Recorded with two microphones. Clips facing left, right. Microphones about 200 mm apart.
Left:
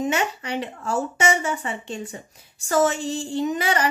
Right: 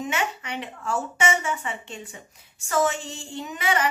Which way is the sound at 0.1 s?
40° left (ahead or behind).